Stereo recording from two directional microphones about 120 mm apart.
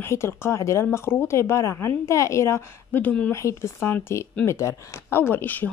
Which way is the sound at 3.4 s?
25° left (ahead or behind).